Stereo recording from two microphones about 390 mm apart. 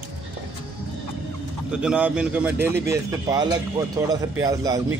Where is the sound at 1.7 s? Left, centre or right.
Centre.